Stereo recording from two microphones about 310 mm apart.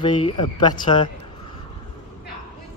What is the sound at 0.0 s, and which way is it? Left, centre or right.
A man's voice, centre.